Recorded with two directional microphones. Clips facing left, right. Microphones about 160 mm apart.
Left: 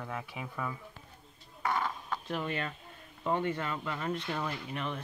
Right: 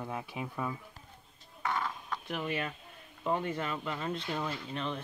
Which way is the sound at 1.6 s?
40° left (ahead or behind).